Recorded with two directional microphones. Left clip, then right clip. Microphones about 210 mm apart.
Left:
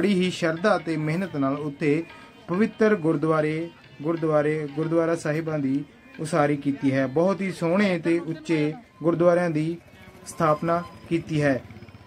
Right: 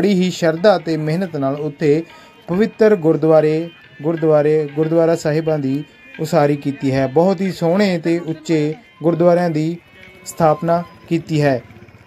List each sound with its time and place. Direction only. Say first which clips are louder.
0.0 s speech: right 7 dB; 20° right (ahead or behind)